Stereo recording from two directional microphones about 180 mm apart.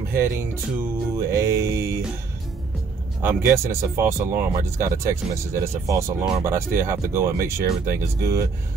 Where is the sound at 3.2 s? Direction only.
15° right (ahead or behind).